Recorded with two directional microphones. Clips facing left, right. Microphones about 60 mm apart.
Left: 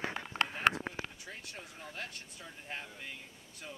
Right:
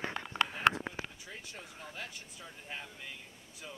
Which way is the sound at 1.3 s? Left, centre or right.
Centre.